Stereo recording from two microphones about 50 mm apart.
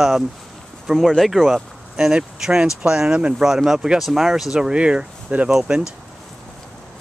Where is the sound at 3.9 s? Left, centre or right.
Centre; by 5.5 s right.